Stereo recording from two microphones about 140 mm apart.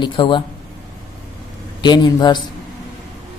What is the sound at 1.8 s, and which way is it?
Speech, 30° left (ahead or behind).